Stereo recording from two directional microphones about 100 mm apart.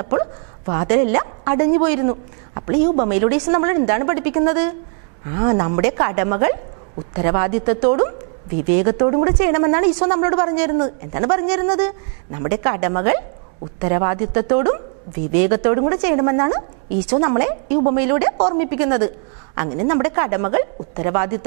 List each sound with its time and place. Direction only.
0.7 s a woman's voice: 15° right (ahead or behind)